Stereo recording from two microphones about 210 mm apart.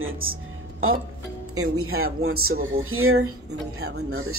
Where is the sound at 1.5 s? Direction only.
90° right.